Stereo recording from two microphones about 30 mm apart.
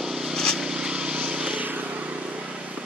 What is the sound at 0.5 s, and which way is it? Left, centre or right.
Vehicle, right.